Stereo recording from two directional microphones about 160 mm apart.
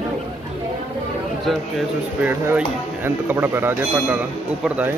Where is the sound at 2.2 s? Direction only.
10° right (ahead or behind).